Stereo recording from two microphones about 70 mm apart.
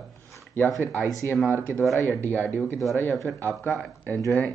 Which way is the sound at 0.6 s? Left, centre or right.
Right.